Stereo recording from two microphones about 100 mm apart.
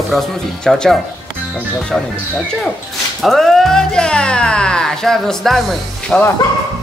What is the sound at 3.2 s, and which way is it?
Speech, centre (ahead or behind).